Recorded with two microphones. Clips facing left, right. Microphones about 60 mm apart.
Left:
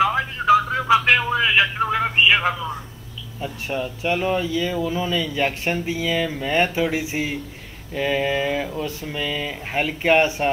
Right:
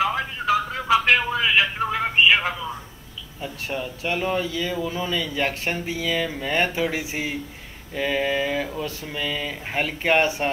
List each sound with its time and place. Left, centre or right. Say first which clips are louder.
0.0 s telephone: left 4 dB; centre
0.7 s a sound: left 2 dB; centre
1.3 s music: left 2 dB; centre
1.6 s speech: left 3 dB; centre
3.7 s speech: left 4 dB; centre
4.4 s speech: left 3 dB; centre
4.6 s speech: left 3 dB; centre
6.1 s speech: left 2 dB; centre
6.6 s speech: left 3 dB; centre
7.9 s speech: left 2 dB; centre